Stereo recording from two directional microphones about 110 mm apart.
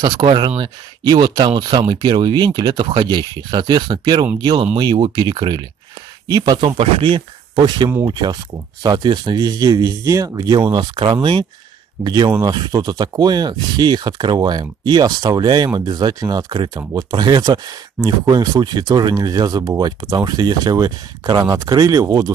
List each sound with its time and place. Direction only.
0.0 s speech: 45° right (ahead or behind)
8.1 s speech: 35° right (ahead or behind)
10.7 s speech: 45° right (ahead or behind)